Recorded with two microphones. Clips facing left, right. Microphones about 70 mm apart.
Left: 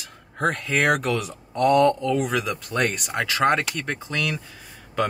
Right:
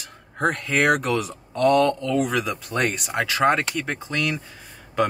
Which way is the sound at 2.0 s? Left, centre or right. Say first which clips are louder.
Right 1 dB; centre.